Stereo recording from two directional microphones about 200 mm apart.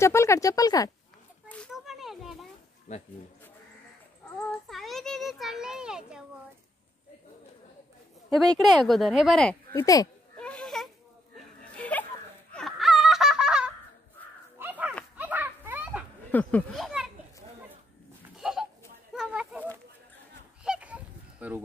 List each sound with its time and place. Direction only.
0.0 s speech: 15° left (ahead or behind)
1.5 s a sound: centre (ahead or behind)
2.9 s speech: 35° left (ahead or behind)
4.6 s speech: centre (ahead or behind)
8.3 s speech: centre (ahead or behind)
10.3 s a sound: 5° left (ahead or behind)
12.5 s laughter: centre (ahead or behind)
14.6 s dog: 10° right (ahead or behind)
15.1 s a sound: 10° right (ahead or behind)
16.3 s a child's voice: 10° left (ahead or behind)
18.4 s a sound: centre (ahead or behind)
20.6 s honk: 5° right (ahead or behind)